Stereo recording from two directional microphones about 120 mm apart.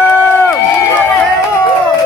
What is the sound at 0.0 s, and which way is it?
Run, 20° left (ahead or behind).